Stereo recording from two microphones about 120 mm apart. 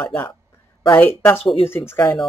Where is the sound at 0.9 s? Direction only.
15° left (ahead or behind).